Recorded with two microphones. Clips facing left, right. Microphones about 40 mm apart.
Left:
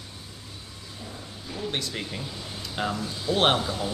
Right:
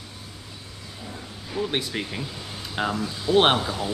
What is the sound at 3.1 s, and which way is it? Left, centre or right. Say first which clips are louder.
Speech: right 4 dB; right.